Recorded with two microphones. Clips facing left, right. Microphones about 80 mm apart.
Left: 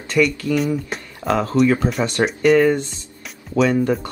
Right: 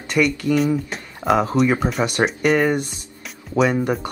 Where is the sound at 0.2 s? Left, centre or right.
Centre.